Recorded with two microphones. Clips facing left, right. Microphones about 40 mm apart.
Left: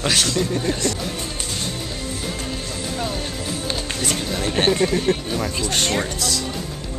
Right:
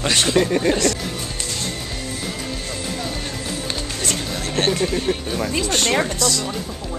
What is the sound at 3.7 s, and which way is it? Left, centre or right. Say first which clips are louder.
Music: left 1 dB; centre.